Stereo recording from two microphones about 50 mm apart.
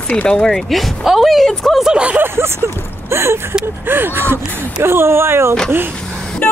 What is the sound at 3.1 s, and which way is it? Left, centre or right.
Speech, right.